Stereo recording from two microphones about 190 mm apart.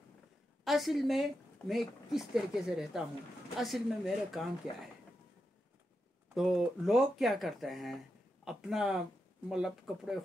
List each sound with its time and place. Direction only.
0.7 s speech: centre (ahead or behind)
6.2 s speech: 5° right (ahead or behind)